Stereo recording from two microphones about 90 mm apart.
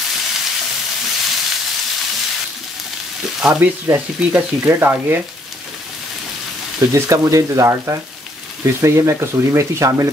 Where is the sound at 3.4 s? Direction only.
15° right (ahead or behind).